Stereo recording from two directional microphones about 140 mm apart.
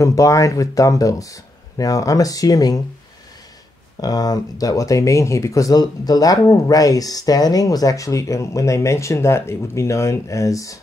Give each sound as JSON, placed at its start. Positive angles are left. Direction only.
{"t": 0.0, "sound": "speech", "side_deg": 25}
{"t": 4.0, "sound": "speech", "side_deg": 25}